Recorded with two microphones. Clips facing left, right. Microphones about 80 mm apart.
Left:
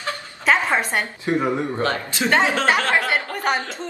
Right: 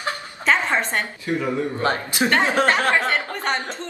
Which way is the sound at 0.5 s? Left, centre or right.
Centre.